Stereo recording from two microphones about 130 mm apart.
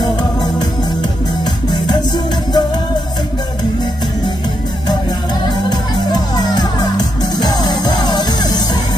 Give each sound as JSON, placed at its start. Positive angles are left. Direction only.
{"t": 0.0, "sound": "music", "side_deg": 30}
{"t": 5.7, "sound": "music", "side_deg": 30}